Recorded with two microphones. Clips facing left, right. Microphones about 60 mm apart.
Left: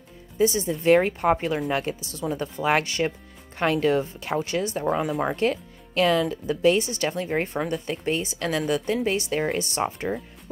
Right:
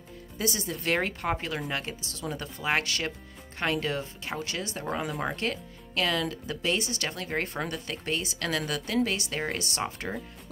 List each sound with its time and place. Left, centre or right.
0.6 s a woman's voice: left
4.8 s speech: centre
5.2 s a woman's voice: left